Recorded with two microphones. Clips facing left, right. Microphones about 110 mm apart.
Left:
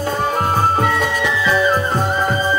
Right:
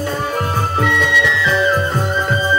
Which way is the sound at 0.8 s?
40° left (ahead or behind).